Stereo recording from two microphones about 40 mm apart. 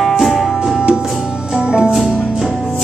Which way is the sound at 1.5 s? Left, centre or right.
Right.